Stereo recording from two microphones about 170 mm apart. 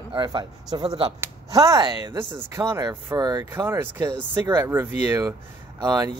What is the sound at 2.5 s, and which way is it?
Speech, 15° right (ahead or behind).